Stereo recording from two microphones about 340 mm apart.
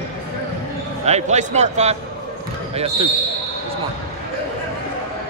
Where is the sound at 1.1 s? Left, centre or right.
Centre.